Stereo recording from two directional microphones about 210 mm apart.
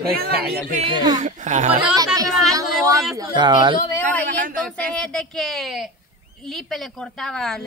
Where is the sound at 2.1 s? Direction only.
15° right (ahead or behind).